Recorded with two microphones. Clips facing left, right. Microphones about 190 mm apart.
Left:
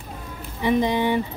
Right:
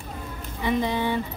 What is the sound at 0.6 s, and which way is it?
Speech, 20° left (ahead or behind).